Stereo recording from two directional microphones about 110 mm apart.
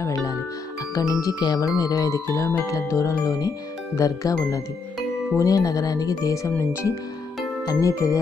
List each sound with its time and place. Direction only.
0.0 s music: 30° left (ahead or behind)
0.9 s speech: 30° left (ahead or behind)
1.8 s music: 35° left (ahead or behind)
5.4 s speech: 35° left (ahead or behind)
7.6 s music: 30° left (ahead or behind)